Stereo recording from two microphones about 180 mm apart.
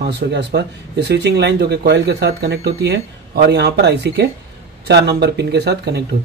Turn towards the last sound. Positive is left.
turn(degrees=-70)  # may be behind; listen again after turning